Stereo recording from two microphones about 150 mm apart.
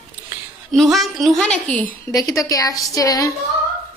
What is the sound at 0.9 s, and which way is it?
Speech, centre (ahead or behind).